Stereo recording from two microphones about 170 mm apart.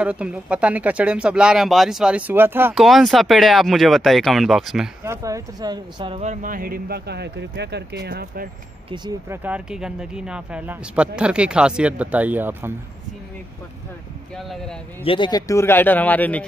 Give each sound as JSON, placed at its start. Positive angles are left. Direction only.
{"t": 0.0, "sound": "speech", "side_deg": -5}
{"t": 2.7, "sound": "speech", "side_deg": 0}
{"t": 5.0, "sound": "speech", "side_deg": -20}
{"t": 6.2, "sound": "speech", "side_deg": -50}
{"t": 9.3, "sound": "speech", "side_deg": -10}
{"t": 14.3, "sound": "speech", "side_deg": 5}
{"t": 15.0, "sound": "speech", "side_deg": 25}